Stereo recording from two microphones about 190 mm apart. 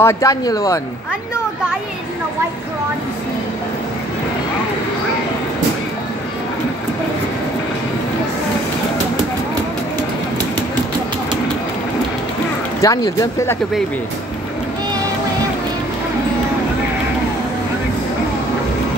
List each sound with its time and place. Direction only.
0.0 s speech: 15° left (ahead or behind)
12.8 s speech: 20° left (ahead or behind)